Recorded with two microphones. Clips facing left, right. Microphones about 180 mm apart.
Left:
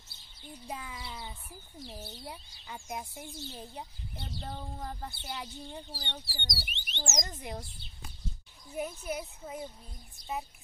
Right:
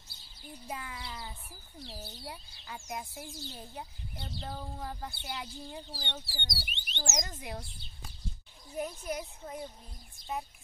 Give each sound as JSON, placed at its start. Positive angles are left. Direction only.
{"t": 0.7, "sound": "speech", "side_deg": 0}
{"t": 4.4, "sound": "speech", "side_deg": 0}
{"t": 8.7, "sound": "speech", "side_deg": 5}